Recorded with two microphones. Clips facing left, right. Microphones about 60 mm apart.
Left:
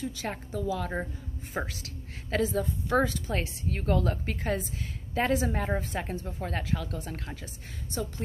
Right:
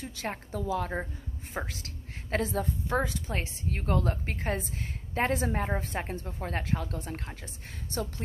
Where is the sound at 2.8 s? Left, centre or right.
Right.